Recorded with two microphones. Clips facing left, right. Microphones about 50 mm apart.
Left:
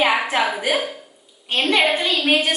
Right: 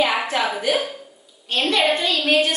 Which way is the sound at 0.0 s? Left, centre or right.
Left.